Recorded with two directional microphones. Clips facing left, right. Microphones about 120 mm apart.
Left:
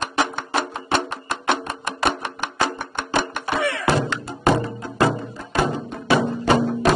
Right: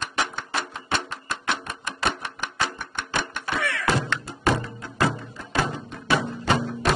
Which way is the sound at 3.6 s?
25° left (ahead or behind).